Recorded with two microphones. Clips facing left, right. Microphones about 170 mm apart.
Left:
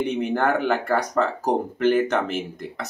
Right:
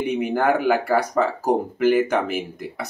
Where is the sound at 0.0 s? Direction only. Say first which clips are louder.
Right 1 dB; 10° right (ahead or behind).